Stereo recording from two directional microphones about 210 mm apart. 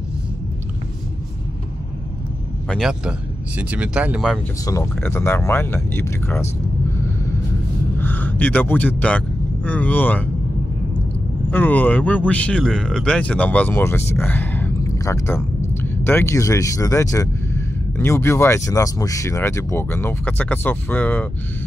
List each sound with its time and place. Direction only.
2.7 s speech: centre (ahead or behind)
4.6 s speech: 10° left (ahead or behind)
8.0 s speech: 10° left (ahead or behind)
11.5 s speech: 10° left (ahead or behind)